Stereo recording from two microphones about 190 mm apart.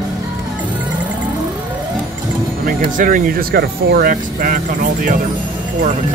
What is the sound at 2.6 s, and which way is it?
Speech, 45° right (ahead or behind).